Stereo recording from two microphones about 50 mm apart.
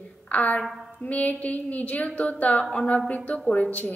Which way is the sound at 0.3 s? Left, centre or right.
Left.